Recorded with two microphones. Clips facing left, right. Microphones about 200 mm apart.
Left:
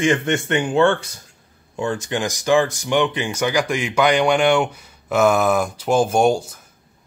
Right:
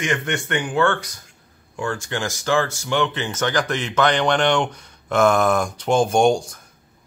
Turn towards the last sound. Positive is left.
turn(degrees=5)  # may be behind; listen again after turning